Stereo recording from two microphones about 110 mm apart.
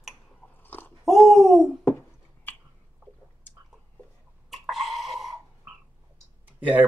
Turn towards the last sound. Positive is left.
turn(degrees=-15)  # may be behind; listen again after turning